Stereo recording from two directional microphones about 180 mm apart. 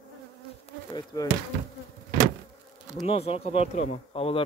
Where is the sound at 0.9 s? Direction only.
20° left (ahead or behind).